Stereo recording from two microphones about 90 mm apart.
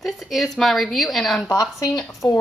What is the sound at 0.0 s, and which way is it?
A woman's voice, centre (ahead or behind).